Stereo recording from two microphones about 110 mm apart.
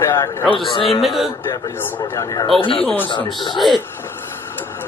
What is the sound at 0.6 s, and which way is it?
Speech, 50° left (ahead or behind).